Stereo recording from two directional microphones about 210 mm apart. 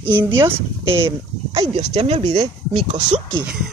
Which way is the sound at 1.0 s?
25° right (ahead or behind).